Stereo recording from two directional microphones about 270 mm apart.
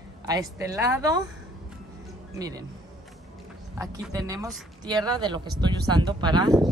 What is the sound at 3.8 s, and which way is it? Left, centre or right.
Speech, centre.